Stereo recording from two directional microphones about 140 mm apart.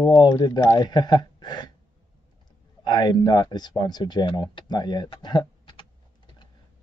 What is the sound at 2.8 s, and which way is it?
Speech, 30° left (ahead or behind).